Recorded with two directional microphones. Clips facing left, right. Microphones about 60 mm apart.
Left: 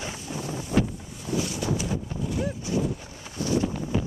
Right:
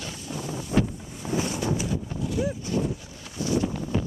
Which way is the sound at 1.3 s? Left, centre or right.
Right.